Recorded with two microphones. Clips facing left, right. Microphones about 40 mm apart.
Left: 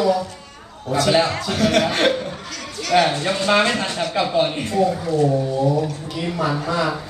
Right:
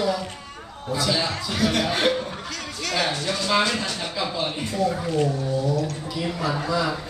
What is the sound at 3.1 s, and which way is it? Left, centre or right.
Speech, left.